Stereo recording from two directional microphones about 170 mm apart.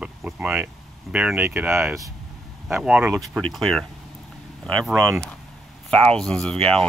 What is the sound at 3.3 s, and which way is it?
Speech, centre (ahead or behind).